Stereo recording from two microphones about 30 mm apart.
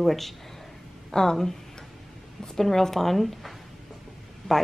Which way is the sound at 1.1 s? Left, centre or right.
Centre.